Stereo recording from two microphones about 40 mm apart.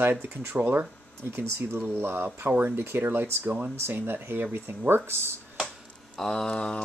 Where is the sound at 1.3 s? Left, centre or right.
Right.